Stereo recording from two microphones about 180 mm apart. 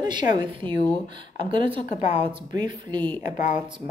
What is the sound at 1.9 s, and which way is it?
Speech, 40° left (ahead or behind).